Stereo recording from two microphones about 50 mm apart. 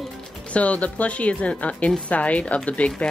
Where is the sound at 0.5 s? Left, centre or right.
Left.